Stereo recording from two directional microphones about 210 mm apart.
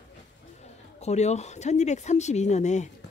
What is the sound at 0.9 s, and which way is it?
Speech, 30° left (ahead or behind).